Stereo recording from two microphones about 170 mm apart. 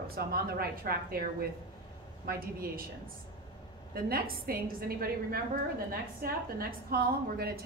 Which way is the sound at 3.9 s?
60° right (ahead or behind).